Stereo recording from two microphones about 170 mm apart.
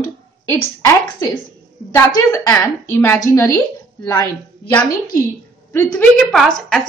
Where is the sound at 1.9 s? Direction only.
15° left (ahead or behind).